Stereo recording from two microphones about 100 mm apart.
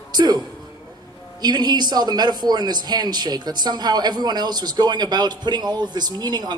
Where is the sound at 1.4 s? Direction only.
45° right (ahead or behind).